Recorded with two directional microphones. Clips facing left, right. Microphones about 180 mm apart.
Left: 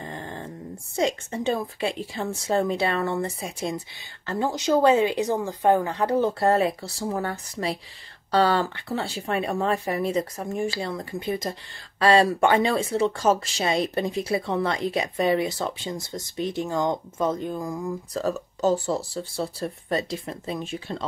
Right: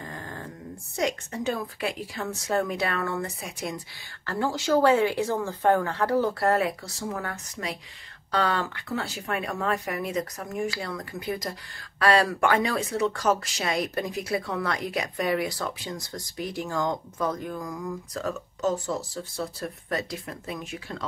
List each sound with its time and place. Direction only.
0.0 s dog: 25° left (ahead or behind)
0.9 s speech: 25° left (ahead or behind)